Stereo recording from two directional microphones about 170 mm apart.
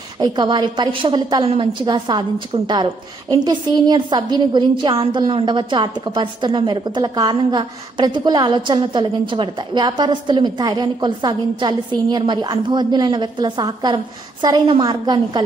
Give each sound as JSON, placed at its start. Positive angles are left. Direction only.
{"t": 0.2, "sound": "a woman's voice", "side_deg": -25}